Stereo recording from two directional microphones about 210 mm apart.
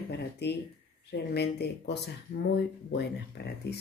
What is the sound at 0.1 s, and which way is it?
Speech, 55° left (ahead or behind).